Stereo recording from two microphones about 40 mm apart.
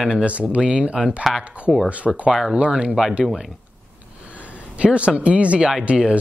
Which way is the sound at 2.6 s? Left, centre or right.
Right.